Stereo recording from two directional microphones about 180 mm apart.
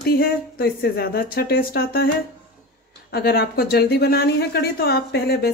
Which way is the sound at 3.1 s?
60° left (ahead or behind).